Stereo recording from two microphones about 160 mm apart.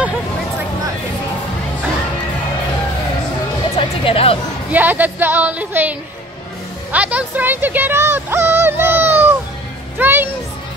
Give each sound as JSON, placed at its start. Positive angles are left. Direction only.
{"t": 3.7, "sound": "music", "side_deg": 35}
{"t": 4.6, "sound": "speech", "side_deg": -10}
{"t": 6.9, "sound": "music", "side_deg": -10}